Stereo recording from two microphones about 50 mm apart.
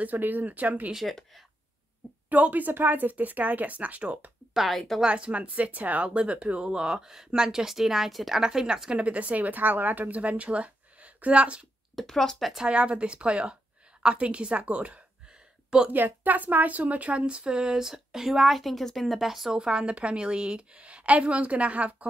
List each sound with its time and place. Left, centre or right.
0.0 s speech: right
2.2 s speech: right
4.6 s speech: centre
5.0 s speech: right; by 8.4 s centre
8.4 s a woman's voice: centre
9.0 s speech: right
11.9 s speech: centre
12.6 s speech: right
15.9 s speech: right; by 19.5 s centre
19.5 s speech: centre